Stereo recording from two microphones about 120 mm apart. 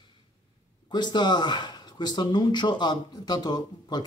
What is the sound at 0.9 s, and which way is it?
Speech, 40° left (ahead or behind).